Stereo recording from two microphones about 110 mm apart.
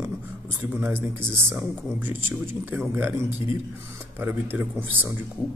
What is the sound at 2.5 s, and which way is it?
Speech, 20° right (ahead or behind).